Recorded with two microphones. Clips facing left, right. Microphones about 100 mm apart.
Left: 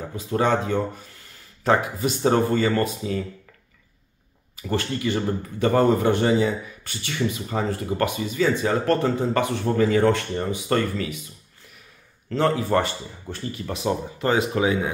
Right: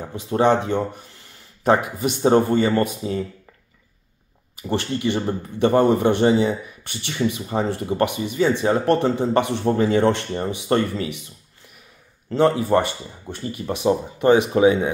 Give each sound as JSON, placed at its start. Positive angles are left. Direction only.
{"t": 0.1, "sound": "speech", "side_deg": -25}
{"t": 4.6, "sound": "speech", "side_deg": -20}
{"t": 12.3, "sound": "speech", "side_deg": -20}